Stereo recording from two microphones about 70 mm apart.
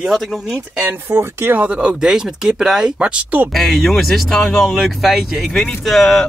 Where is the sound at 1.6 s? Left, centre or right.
Centre.